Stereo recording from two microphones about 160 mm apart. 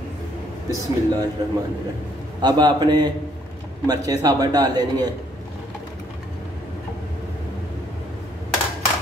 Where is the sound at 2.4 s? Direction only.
25° right (ahead or behind).